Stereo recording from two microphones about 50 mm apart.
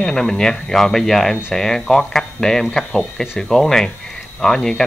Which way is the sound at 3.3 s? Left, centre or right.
Centre.